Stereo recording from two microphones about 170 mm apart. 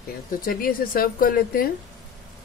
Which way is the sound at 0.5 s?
60° left (ahead or behind).